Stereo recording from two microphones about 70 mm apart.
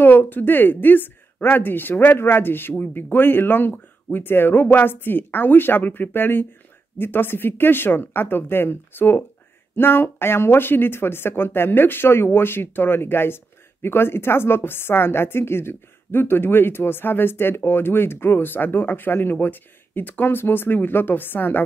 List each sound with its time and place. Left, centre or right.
0.0 s a woman's voice: left